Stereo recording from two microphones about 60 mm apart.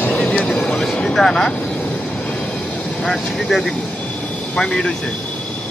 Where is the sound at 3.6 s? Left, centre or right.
Left.